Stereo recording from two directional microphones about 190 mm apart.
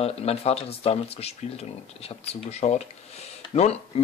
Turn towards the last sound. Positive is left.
turn(degrees=30)  # may be behind; listen again after turning